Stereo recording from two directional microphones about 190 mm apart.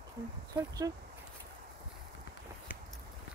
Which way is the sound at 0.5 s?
20° right (ahead or behind).